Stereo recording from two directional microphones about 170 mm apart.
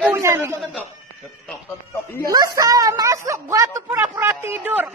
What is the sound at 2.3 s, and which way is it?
A man's voice, 20° right (ahead or behind).